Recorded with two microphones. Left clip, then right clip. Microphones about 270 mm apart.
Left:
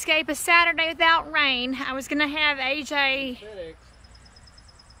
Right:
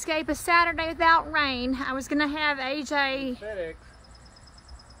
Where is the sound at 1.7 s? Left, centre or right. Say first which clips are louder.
Left 1 dB; centre.